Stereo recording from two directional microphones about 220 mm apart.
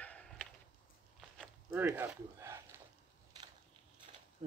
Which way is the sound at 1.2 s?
5° right (ahead or behind).